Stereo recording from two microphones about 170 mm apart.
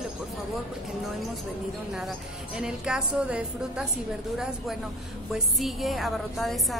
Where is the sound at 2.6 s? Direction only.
5° right (ahead or behind).